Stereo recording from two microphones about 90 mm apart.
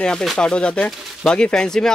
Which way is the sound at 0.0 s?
5° left (ahead or behind).